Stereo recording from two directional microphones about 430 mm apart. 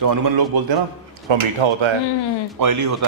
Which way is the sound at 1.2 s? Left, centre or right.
Right.